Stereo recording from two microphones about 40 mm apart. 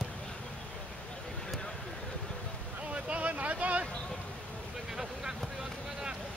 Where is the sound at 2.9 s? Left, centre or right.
Right.